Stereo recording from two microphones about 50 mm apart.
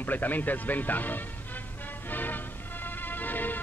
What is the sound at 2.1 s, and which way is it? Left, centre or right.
Music, left.